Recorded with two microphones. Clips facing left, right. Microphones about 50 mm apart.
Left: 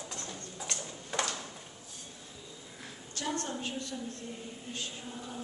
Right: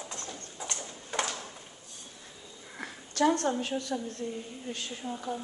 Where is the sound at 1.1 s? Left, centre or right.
Centre.